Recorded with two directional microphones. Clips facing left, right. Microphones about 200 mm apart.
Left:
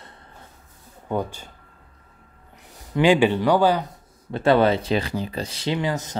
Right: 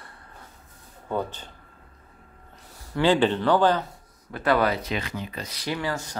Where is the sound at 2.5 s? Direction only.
15° left (ahead or behind).